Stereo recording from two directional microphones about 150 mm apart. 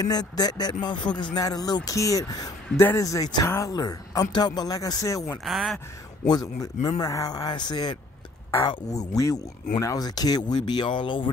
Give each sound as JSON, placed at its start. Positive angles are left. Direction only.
{"t": 0.0, "sound": "speech", "side_deg": 25}
{"t": 5.4, "sound": "speech", "side_deg": 0}
{"t": 7.0, "sound": "speech", "side_deg": 25}